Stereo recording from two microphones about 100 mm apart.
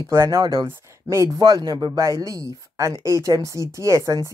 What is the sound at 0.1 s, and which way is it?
Speech, 30° right (ahead or behind).